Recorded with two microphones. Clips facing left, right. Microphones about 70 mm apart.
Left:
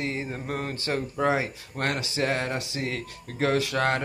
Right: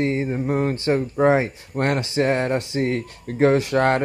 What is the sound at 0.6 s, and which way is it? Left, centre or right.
Speech, right.